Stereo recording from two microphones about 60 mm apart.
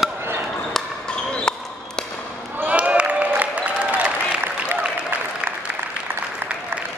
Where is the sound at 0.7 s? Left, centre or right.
Centre.